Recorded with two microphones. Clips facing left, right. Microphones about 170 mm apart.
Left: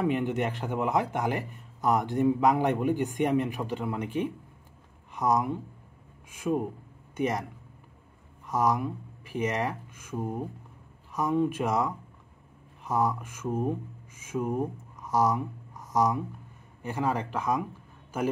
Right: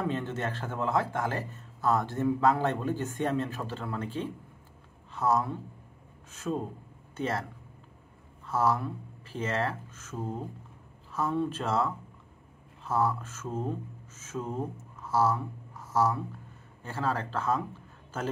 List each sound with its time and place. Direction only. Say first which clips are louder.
0.0 s a man's voice: left 5 dB; 15° left (ahead or behind)
8.5 s a man's voice: left 1 dB; 15° left (ahead or behind)